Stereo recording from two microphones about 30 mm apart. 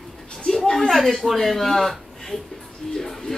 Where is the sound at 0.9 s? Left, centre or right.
Centre.